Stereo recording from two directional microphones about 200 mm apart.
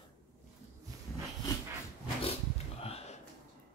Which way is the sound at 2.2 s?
30° left (ahead or behind).